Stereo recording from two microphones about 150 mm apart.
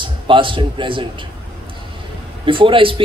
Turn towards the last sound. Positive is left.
turn(degrees=-35)  # may be behind; listen again after turning